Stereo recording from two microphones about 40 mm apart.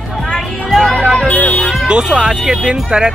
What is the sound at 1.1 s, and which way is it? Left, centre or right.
Music, left.